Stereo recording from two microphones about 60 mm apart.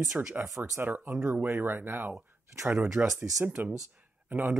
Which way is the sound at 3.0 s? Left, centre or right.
Right.